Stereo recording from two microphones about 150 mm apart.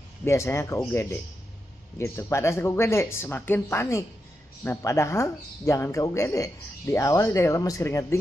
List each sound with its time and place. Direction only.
0.2 s speech: 20° left (ahead or behind)